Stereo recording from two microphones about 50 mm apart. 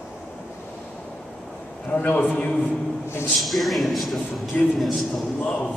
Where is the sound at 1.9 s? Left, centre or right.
Left.